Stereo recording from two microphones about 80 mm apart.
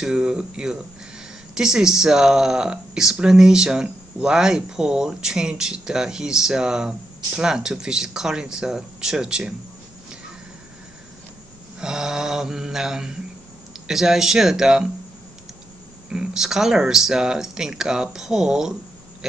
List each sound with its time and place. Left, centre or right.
0.0 s speech: centre
11.8 s speech: centre
16.1 s speech: centre